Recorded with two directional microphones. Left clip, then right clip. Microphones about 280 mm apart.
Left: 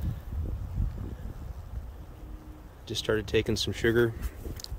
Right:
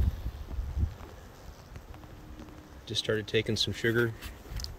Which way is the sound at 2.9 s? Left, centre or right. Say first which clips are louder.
Left 2 dB; centre.